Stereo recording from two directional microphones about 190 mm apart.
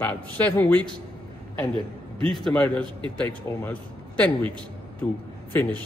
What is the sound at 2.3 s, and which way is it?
Speech, 5° left (ahead or behind).